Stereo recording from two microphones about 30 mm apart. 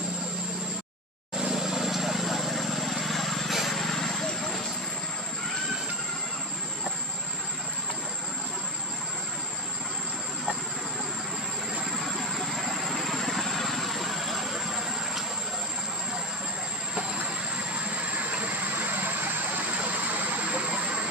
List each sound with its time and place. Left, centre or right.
1.5 s vehicle: centre
12.8 s vehicle: centre
18.1 s vehicle: right
20.4 s vehicle: right